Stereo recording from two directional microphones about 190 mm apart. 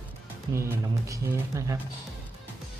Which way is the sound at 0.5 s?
15° right (ahead or behind).